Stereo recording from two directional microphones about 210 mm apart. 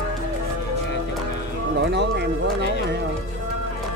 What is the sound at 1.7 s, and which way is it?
Speech, 55° right (ahead or behind).